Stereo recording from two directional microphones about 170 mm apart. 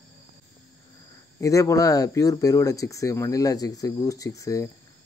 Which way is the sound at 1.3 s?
20° left (ahead or behind).